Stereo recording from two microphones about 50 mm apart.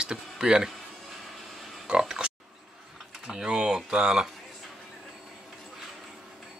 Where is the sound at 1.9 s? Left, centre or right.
Centre.